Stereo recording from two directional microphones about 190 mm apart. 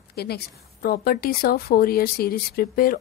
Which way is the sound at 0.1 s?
55° left (ahead or behind).